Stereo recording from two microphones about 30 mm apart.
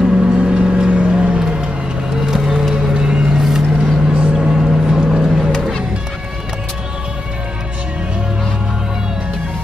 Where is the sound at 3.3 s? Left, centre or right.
Centre.